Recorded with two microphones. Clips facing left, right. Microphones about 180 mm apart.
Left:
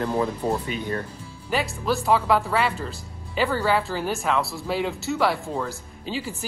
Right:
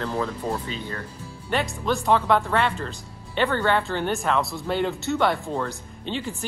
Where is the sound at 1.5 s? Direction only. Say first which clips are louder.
Even; centre (ahead or behind).